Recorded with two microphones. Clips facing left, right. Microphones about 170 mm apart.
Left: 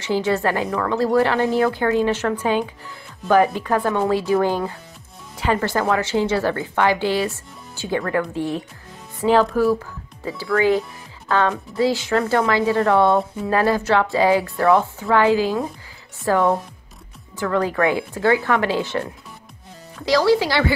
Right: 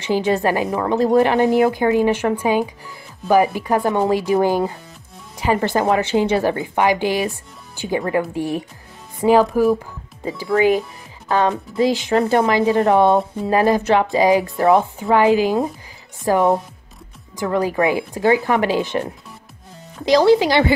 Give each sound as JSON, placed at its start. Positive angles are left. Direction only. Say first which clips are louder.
{"t": 0.0, "sound": "a woman's voice", "louder": "right 2 dB", "side_deg": -15}